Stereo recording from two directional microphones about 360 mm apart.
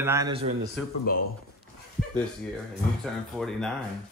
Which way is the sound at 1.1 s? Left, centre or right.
Left.